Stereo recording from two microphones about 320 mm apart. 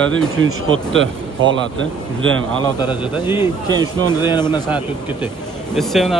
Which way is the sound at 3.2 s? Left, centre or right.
Centre.